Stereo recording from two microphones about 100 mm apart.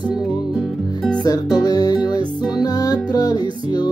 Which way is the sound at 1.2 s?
40° left (ahead or behind).